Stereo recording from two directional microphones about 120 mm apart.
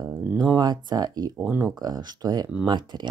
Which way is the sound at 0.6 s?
35° right (ahead or behind).